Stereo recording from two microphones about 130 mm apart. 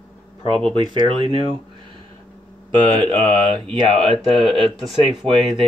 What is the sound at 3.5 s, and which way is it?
Speech, 40° right (ahead or behind).